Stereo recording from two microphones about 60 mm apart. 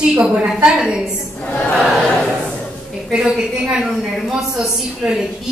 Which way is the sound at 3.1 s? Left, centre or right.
Centre.